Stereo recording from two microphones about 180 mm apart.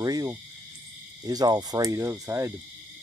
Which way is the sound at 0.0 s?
20° right (ahead or behind).